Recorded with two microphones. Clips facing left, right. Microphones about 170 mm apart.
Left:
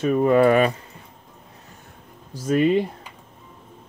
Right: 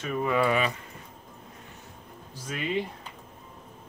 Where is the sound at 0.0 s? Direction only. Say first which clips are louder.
Left 10 dB; 45° left (ahead or behind).